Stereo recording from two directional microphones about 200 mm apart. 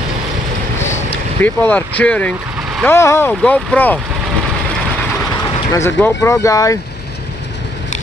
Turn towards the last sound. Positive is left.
turn(degrees=15)  # may be behind; listen again after turning